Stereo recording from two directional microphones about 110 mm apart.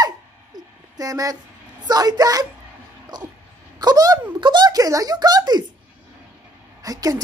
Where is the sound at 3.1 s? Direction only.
40° right (ahead or behind).